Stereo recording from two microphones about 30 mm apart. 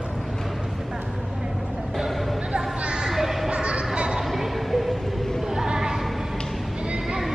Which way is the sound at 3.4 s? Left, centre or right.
Right.